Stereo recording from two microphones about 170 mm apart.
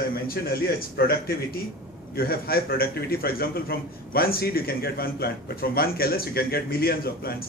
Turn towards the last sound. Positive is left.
turn(degrees=65)  # may be behind; listen again after turning